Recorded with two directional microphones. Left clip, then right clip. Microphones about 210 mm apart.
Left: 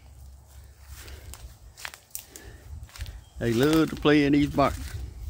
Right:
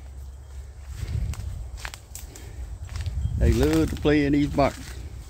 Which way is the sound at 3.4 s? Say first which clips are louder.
Even; 20° left (ahead or behind).